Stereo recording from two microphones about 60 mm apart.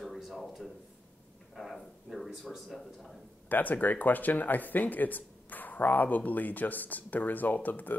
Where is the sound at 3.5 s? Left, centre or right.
Left.